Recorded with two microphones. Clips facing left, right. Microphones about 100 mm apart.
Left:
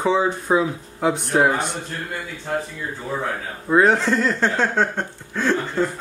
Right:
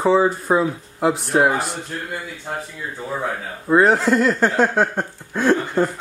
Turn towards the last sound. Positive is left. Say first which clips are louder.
# right 3 dB
turn(degrees=-15)  # may be behind; listen again after turning